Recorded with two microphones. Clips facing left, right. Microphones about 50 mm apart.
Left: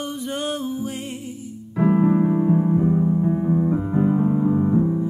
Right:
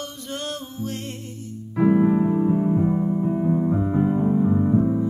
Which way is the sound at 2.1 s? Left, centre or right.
Centre.